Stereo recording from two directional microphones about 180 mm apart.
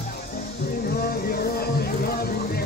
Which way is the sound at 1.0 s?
55° left (ahead or behind).